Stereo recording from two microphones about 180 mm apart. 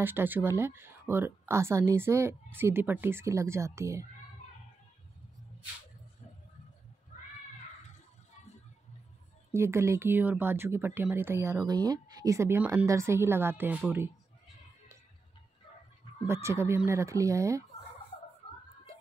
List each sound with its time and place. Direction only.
0.0 s speech: 10° right (ahead or behind)
9.5 s speech: 15° right (ahead or behind)
16.3 s speech: 15° right (ahead or behind)